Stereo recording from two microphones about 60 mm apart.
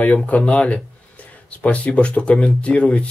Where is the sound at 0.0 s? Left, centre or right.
Left.